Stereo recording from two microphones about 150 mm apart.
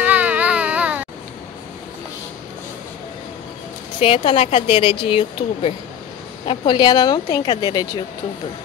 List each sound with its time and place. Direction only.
0.0 s baby cry: 10° right (ahead or behind)
4.0 s a woman's voice: 40° left (ahead or behind)